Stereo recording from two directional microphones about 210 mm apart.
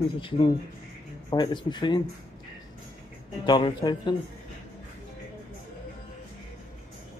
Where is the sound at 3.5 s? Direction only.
20° left (ahead or behind).